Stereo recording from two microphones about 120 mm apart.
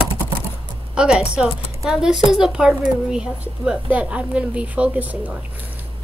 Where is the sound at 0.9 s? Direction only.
5° right (ahead or behind).